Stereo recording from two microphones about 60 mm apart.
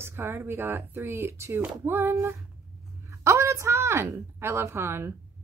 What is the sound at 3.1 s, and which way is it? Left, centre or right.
A woman's voice, right.